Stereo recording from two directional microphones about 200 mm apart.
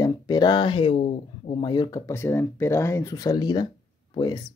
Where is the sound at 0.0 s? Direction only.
20° left (ahead or behind).